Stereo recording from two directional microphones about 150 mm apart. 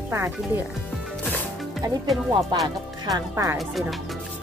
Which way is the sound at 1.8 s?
25° right (ahead or behind).